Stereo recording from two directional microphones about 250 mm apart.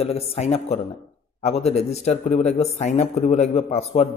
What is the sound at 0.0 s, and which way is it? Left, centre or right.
Speech, left.